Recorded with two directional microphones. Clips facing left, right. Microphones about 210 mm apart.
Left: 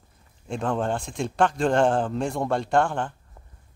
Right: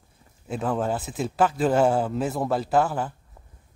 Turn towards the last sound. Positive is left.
turn(degrees=-5)  # may be behind; listen again after turning